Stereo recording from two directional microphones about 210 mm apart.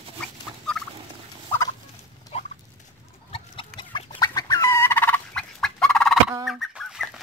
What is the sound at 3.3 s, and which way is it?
Fowl, 25° left (ahead or behind).